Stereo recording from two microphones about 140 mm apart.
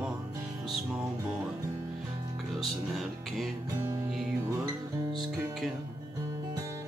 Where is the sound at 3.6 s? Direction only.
20° right (ahead or behind).